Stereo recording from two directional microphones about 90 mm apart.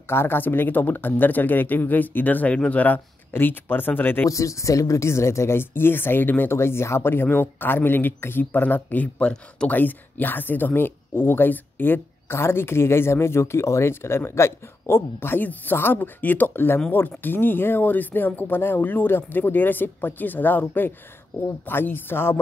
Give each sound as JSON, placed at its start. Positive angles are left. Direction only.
{"t": 0.1, "sound": "speech", "side_deg": 25}
{"t": 4.3, "sound": "speech", "side_deg": 35}